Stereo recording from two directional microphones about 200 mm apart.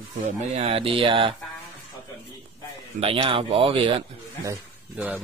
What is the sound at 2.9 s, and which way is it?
A man's voice, 25° right (ahead or behind).